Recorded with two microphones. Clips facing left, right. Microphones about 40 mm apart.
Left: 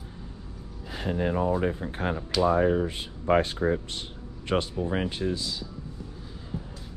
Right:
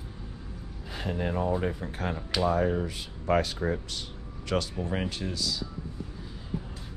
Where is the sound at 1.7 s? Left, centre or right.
Left.